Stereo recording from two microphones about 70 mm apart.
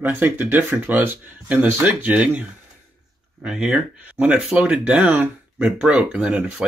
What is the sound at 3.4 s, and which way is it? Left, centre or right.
Speech, centre.